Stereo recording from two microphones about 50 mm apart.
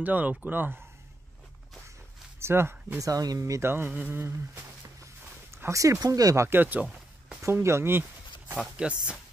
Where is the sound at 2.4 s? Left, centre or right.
Right.